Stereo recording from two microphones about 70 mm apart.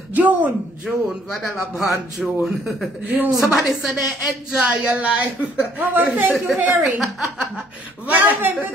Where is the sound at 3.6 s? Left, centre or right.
Centre.